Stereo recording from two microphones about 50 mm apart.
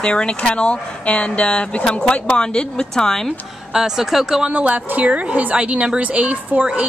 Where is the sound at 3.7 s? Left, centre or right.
Centre.